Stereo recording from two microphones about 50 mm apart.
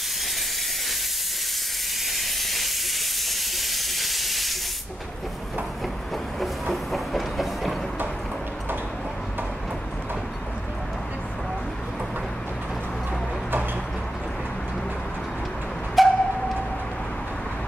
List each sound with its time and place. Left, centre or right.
3.3 s hiss: centre
6.4 s train: centre
16.1 s a sound: centre